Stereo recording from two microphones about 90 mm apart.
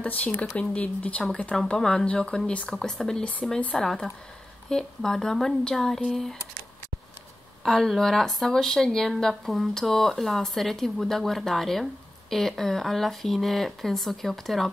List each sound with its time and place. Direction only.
0.0 s speech: 20° left (ahead or behind)
7.6 s speech: 5° left (ahead or behind)